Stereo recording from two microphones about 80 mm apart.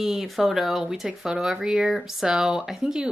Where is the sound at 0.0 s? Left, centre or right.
Centre.